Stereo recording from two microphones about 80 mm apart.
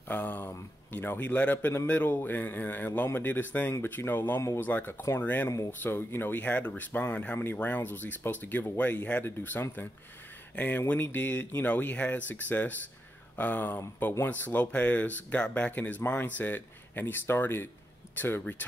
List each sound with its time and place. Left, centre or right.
0.1 s speech: left